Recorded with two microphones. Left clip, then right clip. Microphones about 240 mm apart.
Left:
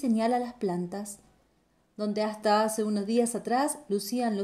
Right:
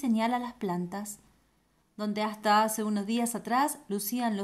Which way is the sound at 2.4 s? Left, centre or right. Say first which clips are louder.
Right 1 dB; centre.